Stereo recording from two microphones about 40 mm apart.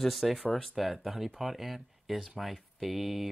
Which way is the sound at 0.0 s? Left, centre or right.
Centre.